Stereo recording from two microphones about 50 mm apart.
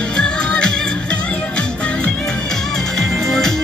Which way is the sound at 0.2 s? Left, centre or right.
Centre.